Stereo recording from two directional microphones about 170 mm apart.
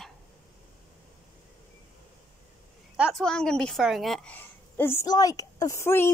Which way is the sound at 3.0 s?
Centre (ahead or behind).